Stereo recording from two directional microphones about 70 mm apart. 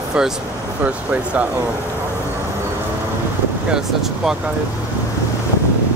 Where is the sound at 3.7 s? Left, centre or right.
Centre.